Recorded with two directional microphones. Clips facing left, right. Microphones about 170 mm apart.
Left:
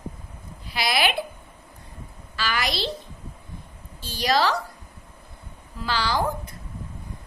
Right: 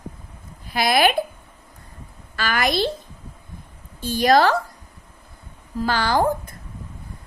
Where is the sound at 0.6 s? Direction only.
50° right (ahead or behind).